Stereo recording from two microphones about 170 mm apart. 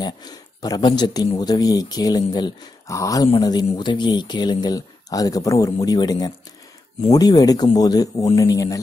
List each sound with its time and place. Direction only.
0.0 s speech: 25° left (ahead or behind)